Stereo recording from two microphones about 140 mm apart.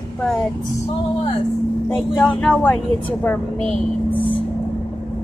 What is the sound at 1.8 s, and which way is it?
Speech, 15° left (ahead or behind).